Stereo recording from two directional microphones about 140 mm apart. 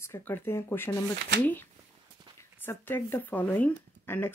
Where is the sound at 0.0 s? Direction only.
15° left (ahead or behind).